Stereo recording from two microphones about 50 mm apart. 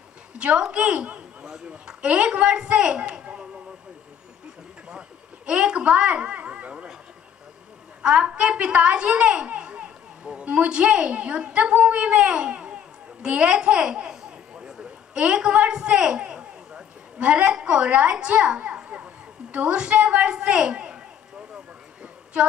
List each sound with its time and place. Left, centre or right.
0.4 s a child's voice: right
5.5 s a child's voice: right
8.0 s a child's voice: right
22.0 s a sound: right